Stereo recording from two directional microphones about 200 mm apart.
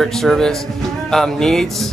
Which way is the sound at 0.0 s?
Centre (ahead or behind).